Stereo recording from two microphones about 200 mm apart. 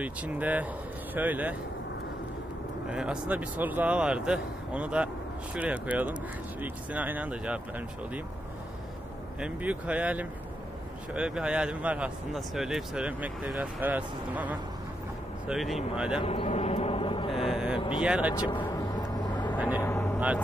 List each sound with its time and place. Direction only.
0.0 s speech: 5° right (ahead or behind)
2.9 s speech: 5° right (ahead or behind)
9.4 s speech: 5° right (ahead or behind)
16.2 s vehicle: 30° left (ahead or behind)
17.5 s vehicle: 5° right (ahead or behind)
17.7 s vehicle: 25° left (ahead or behind)
18.0 s speech: 5° right (ahead or behind)
18.3 s vehicle: 20° left (ahead or behind)